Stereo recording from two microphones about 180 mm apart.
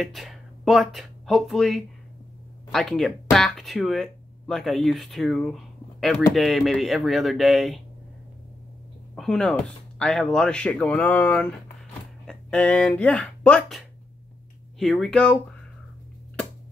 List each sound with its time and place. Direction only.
0.0 s speech: centre (ahead or behind)
9.1 s speech: centre (ahead or behind)